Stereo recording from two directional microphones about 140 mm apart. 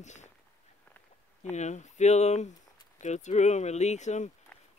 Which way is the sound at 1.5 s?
55° left (ahead or behind).